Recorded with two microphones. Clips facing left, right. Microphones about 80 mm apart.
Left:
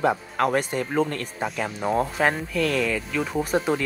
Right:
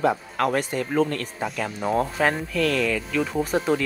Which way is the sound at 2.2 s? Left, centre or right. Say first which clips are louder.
Even; centre.